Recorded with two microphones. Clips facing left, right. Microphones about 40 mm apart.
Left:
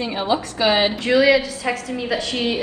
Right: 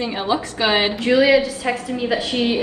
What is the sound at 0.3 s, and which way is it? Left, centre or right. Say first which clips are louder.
Speech: even; right.